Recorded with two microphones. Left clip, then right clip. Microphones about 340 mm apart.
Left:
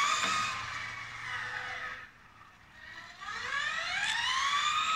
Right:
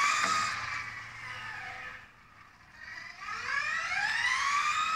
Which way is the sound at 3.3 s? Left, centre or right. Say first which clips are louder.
Right 2 dB; centre.